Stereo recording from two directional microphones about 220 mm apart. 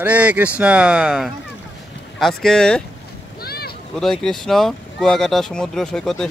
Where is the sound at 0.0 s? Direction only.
5° right (ahead or behind).